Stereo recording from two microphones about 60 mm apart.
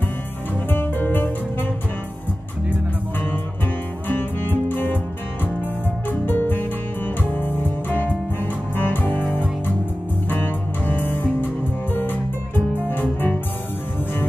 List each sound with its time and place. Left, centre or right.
0.7 s music: left
4.1 s music: left
10.3 s music: left